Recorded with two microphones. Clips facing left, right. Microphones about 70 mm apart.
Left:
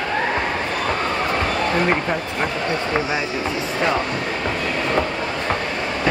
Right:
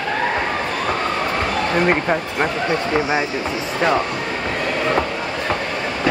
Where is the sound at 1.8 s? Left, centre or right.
Centre.